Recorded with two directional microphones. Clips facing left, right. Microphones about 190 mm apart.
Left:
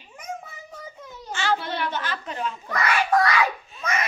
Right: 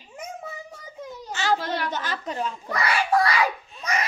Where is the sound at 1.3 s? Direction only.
40° right (ahead or behind).